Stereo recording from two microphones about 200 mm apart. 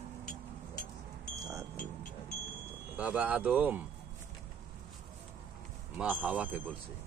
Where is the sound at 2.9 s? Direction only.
5° right (ahead or behind).